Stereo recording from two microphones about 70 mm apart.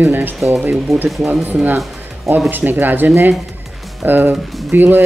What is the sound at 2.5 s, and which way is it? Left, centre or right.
Speech, right.